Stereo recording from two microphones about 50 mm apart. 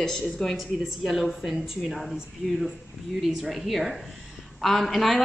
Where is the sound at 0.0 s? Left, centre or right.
Centre.